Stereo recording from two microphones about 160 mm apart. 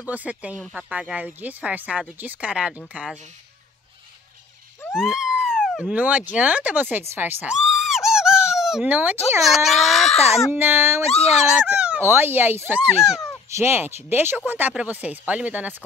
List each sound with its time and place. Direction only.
0.1 s speech: 10° right (ahead or behind)
4.9 s speech: 5° right (ahead or behind)
10.1 s speech: 40° left (ahead or behind)
10.5 s speech: 15° right (ahead or behind)
11.1 s speech: 40° left (ahead or behind)
11.3 s speech: 5° right (ahead or behind)
13.5 s speech: 15° right (ahead or behind)